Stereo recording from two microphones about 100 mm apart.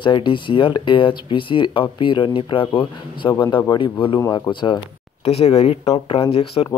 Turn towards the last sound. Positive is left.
turn(degrees=65)  # may be behind; listen again after turning